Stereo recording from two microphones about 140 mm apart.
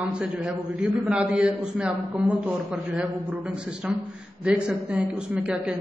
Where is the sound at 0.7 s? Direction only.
5° right (ahead or behind).